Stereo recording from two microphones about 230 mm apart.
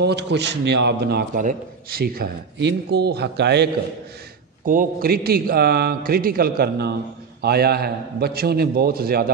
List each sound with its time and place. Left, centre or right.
0.0 s a man's voice: right
4.6 s a man's voice: right